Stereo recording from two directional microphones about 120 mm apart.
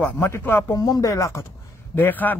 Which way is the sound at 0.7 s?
30° left (ahead or behind).